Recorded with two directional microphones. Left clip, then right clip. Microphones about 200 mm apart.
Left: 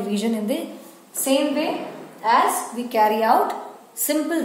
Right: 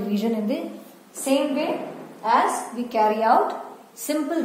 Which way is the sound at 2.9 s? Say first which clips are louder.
Left 1 dB; 25° left (ahead or behind).